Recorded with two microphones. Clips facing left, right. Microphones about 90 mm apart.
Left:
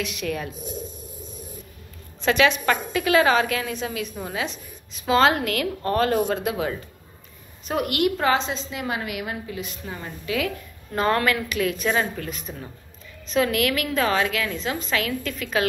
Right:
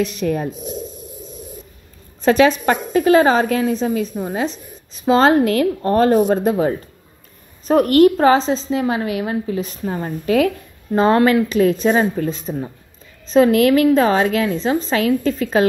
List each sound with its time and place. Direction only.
0.0 s a woman's voice: 35° right (ahead or behind)
2.2 s a woman's voice: 40° right (ahead or behind)
7.6 s a woman's voice: 40° right (ahead or behind)
10.9 s a woman's voice: 25° right (ahead or behind)